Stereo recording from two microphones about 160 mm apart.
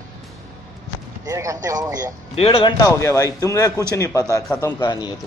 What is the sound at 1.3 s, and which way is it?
Speech, 20° right (ahead or behind).